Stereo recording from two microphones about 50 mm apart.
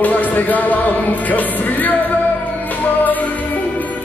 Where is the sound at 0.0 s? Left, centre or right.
Left.